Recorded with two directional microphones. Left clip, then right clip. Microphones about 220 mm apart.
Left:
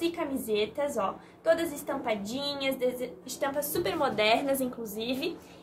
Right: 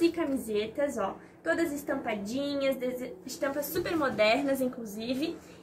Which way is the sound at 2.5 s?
35° left (ahead or behind).